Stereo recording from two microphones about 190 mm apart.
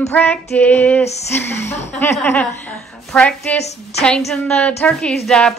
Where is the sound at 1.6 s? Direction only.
35° left (ahead or behind).